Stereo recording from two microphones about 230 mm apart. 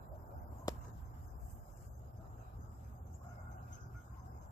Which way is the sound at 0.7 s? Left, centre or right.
Centre.